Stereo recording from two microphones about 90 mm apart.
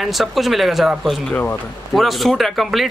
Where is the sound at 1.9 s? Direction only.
Centre (ahead or behind).